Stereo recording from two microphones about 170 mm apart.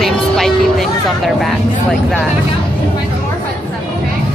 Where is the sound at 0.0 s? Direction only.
Centre (ahead or behind).